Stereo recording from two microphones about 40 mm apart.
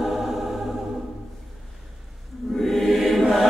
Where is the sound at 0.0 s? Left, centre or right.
Centre.